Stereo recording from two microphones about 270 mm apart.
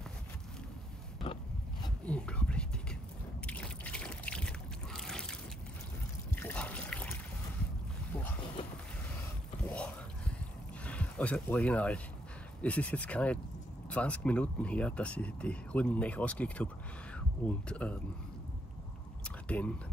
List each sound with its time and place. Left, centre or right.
1.2 s biting: centre
2.0 s whispering: centre
3.4 s a sound: centre
6.3 s trickle: centre
8.1 s boat: centre
10.8 s speech: centre
19.2 s biting: centre